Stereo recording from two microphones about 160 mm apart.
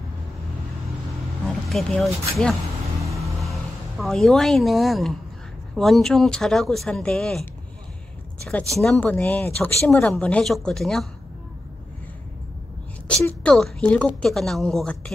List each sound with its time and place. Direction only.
1.7 s speech: centre (ahead or behind)
3.1 s vehicle: 20° right (ahead or behind)
4.0 s speech: centre (ahead or behind)
8.8 s speech: 5° left (ahead or behind)
13.1 s speech: 10° left (ahead or behind)